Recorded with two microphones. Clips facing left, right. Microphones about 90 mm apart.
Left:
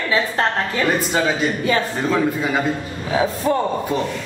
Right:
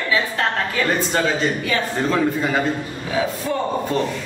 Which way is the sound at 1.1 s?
5° left (ahead or behind).